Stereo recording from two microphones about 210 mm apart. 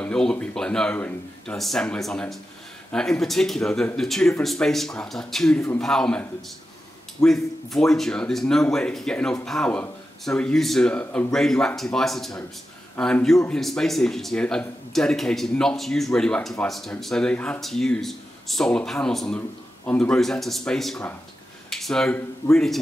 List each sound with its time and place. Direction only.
0.0 s speech: 5° left (ahead or behind)
7.2 s speech: centre (ahead or behind)